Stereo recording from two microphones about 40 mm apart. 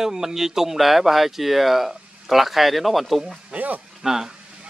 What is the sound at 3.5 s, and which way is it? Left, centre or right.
Speech, right.